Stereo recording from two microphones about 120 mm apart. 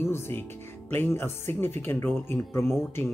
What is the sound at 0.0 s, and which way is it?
Speech, 20° left (ahead or behind).